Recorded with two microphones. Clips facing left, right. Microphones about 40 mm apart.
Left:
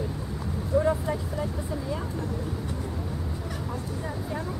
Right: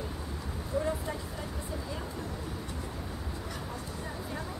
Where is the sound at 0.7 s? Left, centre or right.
Centre.